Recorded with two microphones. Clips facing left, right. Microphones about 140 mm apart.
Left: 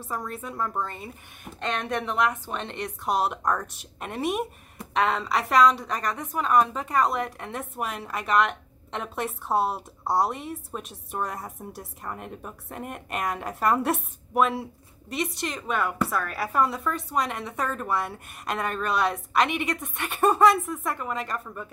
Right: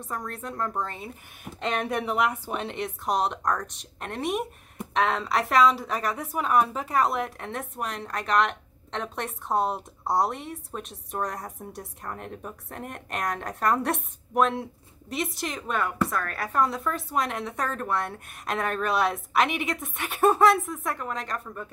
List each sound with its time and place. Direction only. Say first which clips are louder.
0.0 s a woman's voice: left 1 dB; centre (ahead or behind)